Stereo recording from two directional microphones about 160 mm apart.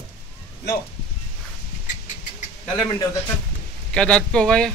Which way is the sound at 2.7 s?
35° left (ahead or behind).